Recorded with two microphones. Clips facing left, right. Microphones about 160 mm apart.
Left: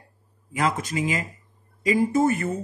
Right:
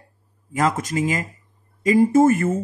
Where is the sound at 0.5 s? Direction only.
45° right (ahead or behind).